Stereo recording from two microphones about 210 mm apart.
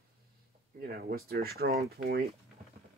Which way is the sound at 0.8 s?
50° right (ahead or behind).